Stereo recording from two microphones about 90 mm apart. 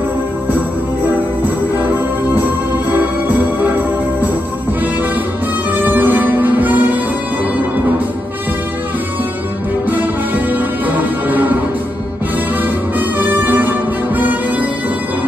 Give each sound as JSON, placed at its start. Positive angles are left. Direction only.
{"t": 2.9, "sound": "music", "side_deg": -20}
{"t": 5.7, "sound": "music", "side_deg": -20}
{"t": 9.8, "sound": "music", "side_deg": -20}
{"t": 13.2, "sound": "music", "side_deg": -20}